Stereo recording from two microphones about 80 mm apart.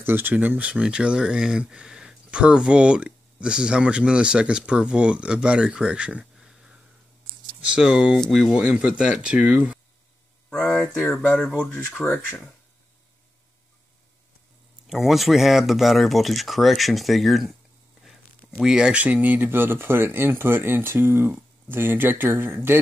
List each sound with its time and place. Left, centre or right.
0.0 s speech: right; by 8.2 s centre
8.2 s speech: centre
8.5 s speech: centre
10.5 s speech: centre
14.9 s speech: centre
18.6 s speech: centre; by 22.8 s right